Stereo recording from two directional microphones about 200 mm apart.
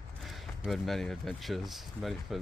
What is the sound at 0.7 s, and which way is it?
Speech, centre (ahead or behind).